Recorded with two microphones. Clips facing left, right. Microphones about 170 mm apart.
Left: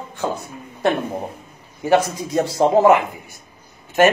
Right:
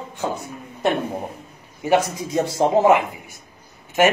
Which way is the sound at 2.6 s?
20° left (ahead or behind).